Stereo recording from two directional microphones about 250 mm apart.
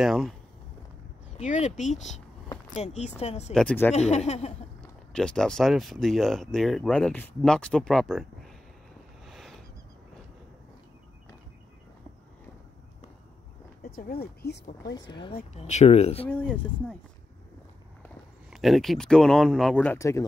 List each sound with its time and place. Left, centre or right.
0.0 s speech: centre
1.3 s speech: left
3.5 s speech: centre
3.9 s speech: left
5.1 s speech: centre
9.2 s a sound: centre
13.8 s speech: left
15.0 s speech: centre
18.0 s speech: centre